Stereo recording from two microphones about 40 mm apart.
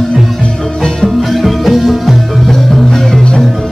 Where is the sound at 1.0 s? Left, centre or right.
Centre.